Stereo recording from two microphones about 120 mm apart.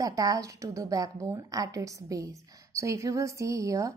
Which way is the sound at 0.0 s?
30° right (ahead or behind).